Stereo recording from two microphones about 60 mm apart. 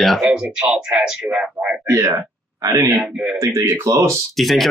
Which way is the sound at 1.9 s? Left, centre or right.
Right.